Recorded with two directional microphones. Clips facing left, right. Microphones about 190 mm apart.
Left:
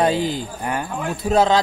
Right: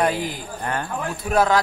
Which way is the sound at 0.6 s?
10° left (ahead or behind).